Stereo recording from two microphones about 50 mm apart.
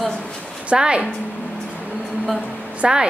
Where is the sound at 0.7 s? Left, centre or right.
Centre.